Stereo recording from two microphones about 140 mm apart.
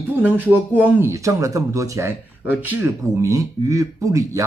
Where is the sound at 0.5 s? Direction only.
15° right (ahead or behind).